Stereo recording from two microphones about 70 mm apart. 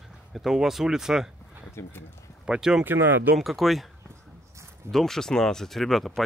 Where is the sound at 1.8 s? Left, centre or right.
Left.